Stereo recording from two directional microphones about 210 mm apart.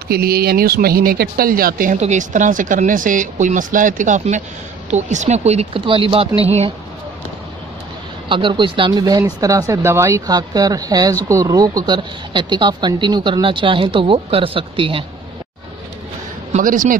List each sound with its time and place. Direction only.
0.1 s speech: 45° right (ahead or behind); by 6.7 s 30° right (ahead or behind)
8.3 s speech: 25° right (ahead or behind)
16.5 s speech: 40° right (ahead or behind)